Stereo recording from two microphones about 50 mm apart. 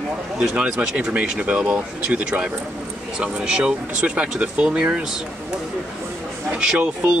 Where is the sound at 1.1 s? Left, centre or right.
Right.